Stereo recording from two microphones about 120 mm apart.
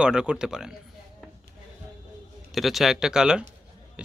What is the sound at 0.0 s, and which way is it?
Speech, 5° right (ahead or behind).